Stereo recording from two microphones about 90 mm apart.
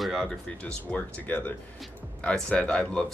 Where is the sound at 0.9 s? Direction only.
15° left (ahead or behind).